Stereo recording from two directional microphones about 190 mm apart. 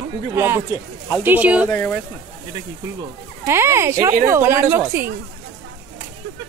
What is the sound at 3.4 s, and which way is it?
A man's voice, 15° right (ahead or behind).